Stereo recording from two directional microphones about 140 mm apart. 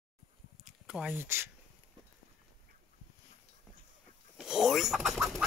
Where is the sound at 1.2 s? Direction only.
20° right (ahead or behind).